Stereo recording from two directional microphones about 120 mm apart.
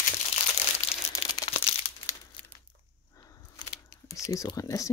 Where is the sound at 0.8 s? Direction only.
70° left (ahead or behind).